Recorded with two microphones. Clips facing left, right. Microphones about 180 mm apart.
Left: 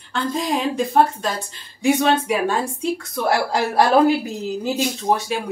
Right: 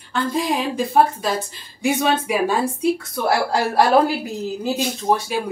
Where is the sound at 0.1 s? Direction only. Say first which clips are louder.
Right 1 dB; centre (ahead or behind).